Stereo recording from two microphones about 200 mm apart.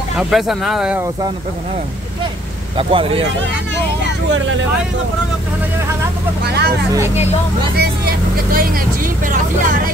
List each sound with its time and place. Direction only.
0.2 s speech: centre (ahead or behind)
2.8 s speech: 25° right (ahead or behind)
4.3 s speech: 65° right (ahead or behind)
6.4 s speech: 55° right (ahead or behind)
7.7 s speech: 50° right (ahead or behind)